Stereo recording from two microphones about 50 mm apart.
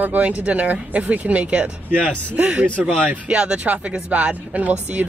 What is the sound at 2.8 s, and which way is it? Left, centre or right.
Speech, centre.